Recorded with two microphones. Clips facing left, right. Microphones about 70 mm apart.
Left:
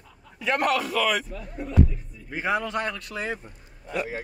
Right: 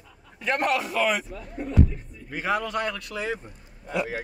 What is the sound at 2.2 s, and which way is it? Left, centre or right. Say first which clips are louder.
Speech: even; centre.